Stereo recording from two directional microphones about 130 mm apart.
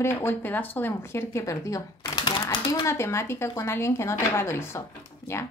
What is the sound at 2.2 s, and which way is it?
Typewriter, 35° left (ahead or behind).